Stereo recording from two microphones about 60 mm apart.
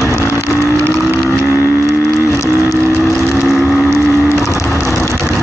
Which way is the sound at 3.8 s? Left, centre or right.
Right.